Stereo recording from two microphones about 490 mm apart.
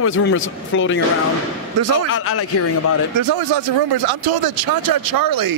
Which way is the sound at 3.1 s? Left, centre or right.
Right.